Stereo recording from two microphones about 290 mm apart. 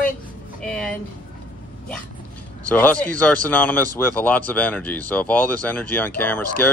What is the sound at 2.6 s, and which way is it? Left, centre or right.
Speech, centre.